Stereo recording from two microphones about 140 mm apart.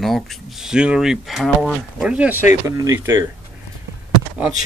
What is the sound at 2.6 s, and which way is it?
Speech, 20° right (ahead or behind).